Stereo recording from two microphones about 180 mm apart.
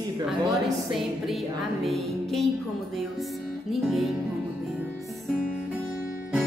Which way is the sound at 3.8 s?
Centre (ahead or behind).